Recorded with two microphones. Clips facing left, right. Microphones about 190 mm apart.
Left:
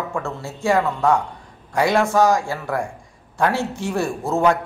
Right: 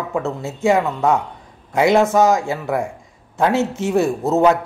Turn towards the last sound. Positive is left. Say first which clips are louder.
# right 4 dB
turn(degrees=-20)  # may be behind; listen again after turning